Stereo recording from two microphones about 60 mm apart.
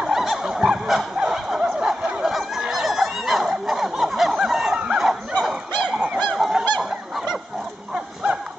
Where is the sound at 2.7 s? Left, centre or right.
Centre.